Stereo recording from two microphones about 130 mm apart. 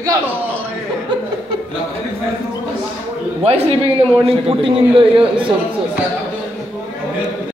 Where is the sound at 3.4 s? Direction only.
50° right (ahead or behind).